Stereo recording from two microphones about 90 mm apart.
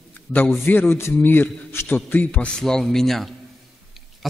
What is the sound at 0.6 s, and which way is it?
A man's voice, 20° left (ahead or behind).